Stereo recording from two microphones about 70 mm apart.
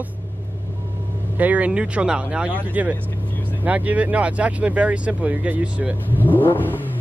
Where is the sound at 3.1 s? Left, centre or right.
Left.